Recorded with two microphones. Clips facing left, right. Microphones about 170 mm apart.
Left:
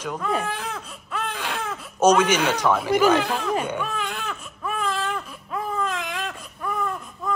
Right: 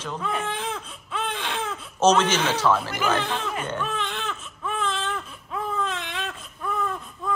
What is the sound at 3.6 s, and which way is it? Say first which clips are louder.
Baby cry: left 1 dB; 10° left (ahead or behind).